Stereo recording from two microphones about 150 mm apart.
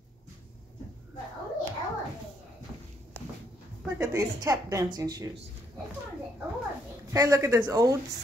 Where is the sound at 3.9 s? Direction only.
20° right (ahead or behind).